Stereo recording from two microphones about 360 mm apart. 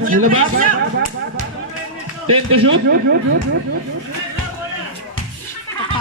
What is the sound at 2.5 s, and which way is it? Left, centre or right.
Speech, right.